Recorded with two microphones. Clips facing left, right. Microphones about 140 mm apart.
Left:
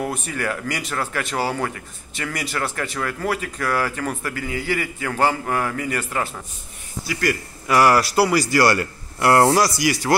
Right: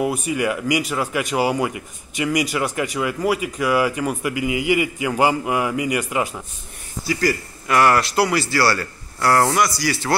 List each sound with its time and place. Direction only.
0.0 s speech: 10° right (ahead or behind)
7.6 s a man's voice: 5° left (ahead or behind); by 9.8 s 25° left (ahead or behind)
9.8 s a man's voice: 15° left (ahead or behind)